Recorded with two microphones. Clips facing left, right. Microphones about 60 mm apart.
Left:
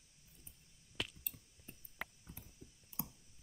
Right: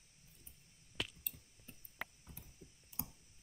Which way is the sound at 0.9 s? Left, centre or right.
Right.